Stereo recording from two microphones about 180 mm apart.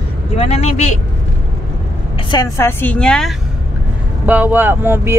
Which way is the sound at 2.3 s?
15° left (ahead or behind).